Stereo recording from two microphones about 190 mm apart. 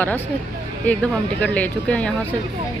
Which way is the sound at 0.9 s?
10° left (ahead or behind).